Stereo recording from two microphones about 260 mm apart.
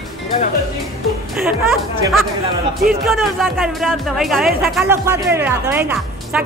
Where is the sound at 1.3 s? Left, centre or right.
Centre.